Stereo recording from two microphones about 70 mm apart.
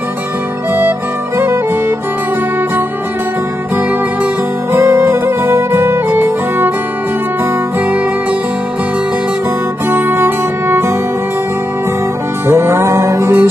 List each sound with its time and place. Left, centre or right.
4.7 s music: right
9.8 s music: right
12.4 s music: right